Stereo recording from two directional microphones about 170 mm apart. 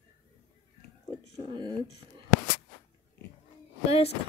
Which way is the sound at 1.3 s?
25° right (ahead or behind).